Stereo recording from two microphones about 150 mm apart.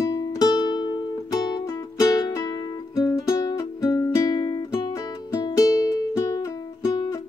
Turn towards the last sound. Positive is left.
turn(degrees=30)  # may be behind; listen again after turning